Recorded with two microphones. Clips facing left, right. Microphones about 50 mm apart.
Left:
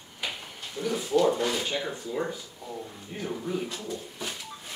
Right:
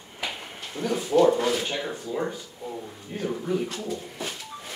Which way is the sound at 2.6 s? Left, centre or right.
Right.